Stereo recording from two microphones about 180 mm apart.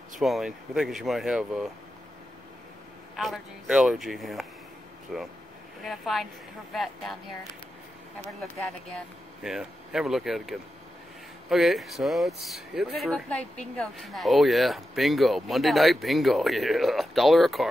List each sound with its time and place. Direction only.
0.2 s speech: centre (ahead or behind)
3.2 s speech: centre (ahead or behind)
8.3 s speech: 5° left (ahead or behind)